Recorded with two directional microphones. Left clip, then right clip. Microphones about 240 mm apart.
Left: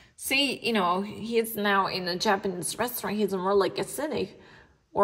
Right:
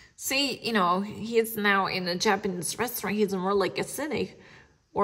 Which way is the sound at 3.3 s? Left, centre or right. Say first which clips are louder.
Left 5 dB; right.